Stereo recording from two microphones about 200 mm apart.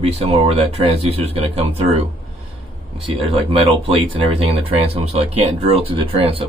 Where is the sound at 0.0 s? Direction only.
30° right (ahead or behind).